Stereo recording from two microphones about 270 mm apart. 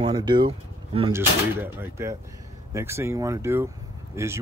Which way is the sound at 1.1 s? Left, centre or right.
Centre.